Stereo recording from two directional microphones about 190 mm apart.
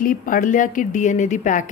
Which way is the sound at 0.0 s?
45° left (ahead or behind).